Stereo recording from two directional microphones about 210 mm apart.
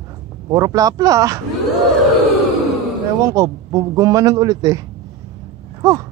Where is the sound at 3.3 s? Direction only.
15° right (ahead or behind).